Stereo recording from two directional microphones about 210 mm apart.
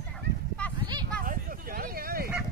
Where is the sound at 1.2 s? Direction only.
40° right (ahead or behind).